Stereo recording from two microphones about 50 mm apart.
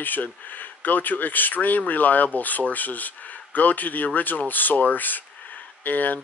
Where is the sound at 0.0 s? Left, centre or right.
Left.